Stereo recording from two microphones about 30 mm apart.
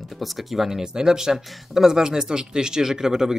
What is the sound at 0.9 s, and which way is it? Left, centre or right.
Speech, centre.